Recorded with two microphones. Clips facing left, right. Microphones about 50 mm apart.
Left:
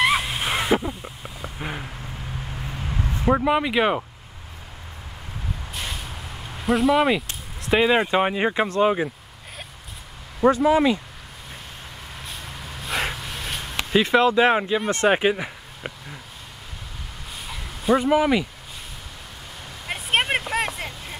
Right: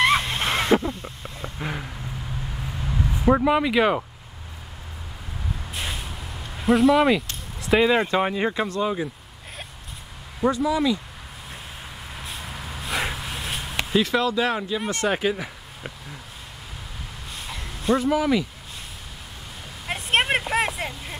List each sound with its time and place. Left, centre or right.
0.0 s a sound: centre
2.5 s vehicle: centre
3.4 s speech: centre
5.7 s vehicle: centre
6.6 s speech: centre
7.8 s speech: centre; by 9.1 s left
10.4 s speech: left
12.2 s a sound: centre
14.0 s speech: left
15.3 s speech: centre
17.5 s a sound: centre
17.9 s speech: left
19.9 s vehicle: centre